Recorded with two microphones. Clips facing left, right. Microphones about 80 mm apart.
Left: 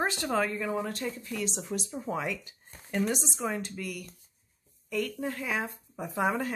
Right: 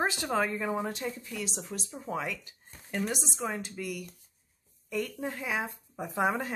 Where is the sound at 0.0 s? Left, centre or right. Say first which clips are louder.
Even; centre.